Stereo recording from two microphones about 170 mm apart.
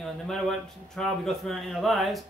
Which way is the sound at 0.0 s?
Centre (ahead or behind).